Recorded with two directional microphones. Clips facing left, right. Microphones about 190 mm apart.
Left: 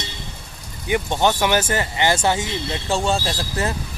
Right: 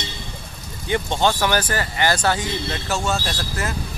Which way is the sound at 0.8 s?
15° left (ahead or behind).